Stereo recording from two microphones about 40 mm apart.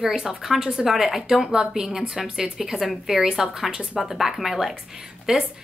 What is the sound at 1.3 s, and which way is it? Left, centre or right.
A woman's voice, right.